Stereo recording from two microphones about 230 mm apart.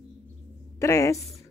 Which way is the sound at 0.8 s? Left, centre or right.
Centre.